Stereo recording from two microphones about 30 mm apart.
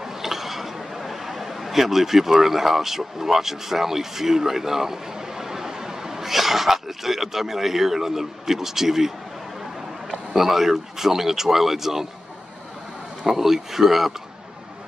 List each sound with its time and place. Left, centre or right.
0.0 s speech: centre
10.3 s speech: centre
13.3 s speech: centre